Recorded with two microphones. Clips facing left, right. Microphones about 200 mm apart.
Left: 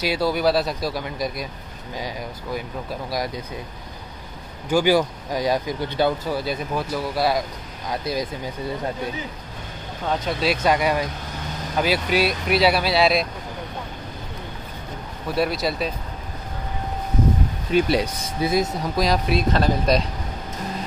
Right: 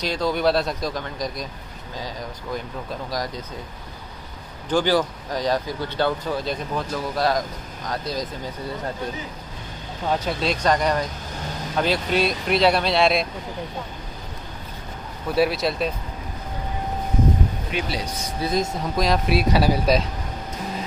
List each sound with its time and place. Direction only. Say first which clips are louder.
0.0 s speech: left 1 dB; 5° left (ahead or behind)
4.6 s speech: left 2 dB; 10° left (ahead or behind)
10.2 s speech: left 3 dB; 5° left (ahead or behind)
15.3 s speech: right 2 dB; centre (ahead or behind)
17.7 s speech: left 10 dB; 40° left (ahead or behind)
18.4 s speech: left 2 dB; 5° left (ahead or behind)